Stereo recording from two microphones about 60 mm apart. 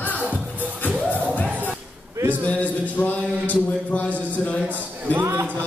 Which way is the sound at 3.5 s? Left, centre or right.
Left.